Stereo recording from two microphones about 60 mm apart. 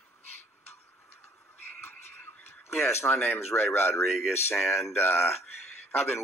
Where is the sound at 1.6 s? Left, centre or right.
Left.